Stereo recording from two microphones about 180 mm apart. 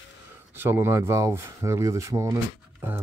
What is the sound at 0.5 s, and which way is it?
Speech, 10° right (ahead or behind).